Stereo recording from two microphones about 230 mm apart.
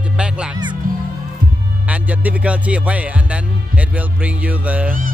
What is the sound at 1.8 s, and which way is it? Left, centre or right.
Speech, centre.